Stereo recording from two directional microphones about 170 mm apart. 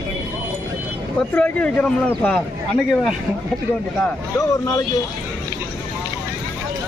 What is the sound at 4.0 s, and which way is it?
Speech, 20° left (ahead or behind).